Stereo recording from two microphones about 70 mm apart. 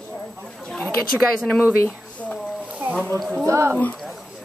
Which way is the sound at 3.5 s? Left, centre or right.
Right.